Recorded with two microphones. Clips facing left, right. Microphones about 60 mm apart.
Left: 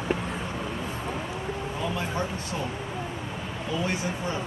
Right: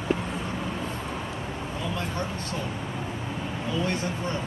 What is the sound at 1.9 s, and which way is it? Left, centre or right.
Speech, centre.